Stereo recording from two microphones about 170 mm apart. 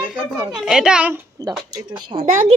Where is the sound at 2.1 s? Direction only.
35° right (ahead or behind).